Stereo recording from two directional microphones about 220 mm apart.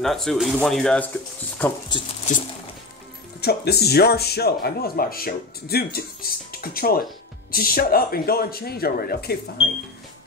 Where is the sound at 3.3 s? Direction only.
45° left (ahead or behind).